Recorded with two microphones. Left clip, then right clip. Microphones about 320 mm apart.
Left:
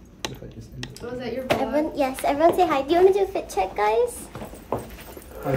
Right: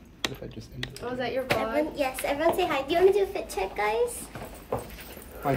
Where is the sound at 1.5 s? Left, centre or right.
Centre.